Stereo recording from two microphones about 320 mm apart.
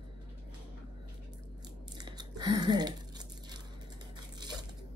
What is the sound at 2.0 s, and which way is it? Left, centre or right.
Crumpling, centre.